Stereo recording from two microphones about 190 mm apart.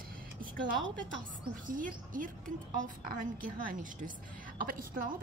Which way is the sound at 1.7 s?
45° right (ahead or behind).